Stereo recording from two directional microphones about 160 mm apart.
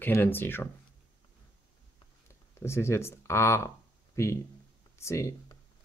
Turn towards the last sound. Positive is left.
turn(degrees=20)  # may be behind; listen again after turning